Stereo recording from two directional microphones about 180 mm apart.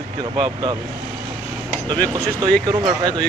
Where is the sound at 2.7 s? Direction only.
25° right (ahead or behind).